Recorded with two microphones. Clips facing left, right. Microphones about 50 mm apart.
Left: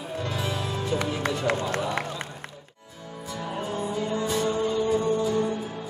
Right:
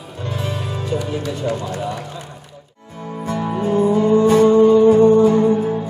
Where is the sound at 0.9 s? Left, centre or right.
Left.